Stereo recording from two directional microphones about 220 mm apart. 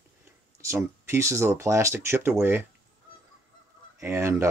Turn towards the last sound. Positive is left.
turn(degrees=-10)  # may be behind; listen again after turning